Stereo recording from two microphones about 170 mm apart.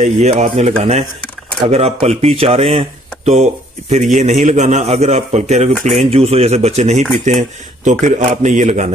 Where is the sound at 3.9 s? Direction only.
40° right (ahead or behind).